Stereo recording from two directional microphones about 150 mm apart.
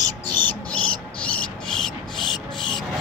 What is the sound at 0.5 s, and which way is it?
Insect, 10° left (ahead or behind).